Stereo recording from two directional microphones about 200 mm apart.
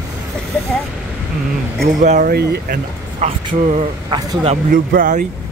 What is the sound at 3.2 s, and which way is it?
Speech, 30° right (ahead or behind).